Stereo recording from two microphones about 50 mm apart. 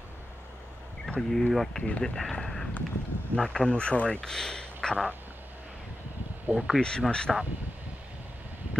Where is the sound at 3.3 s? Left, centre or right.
Centre.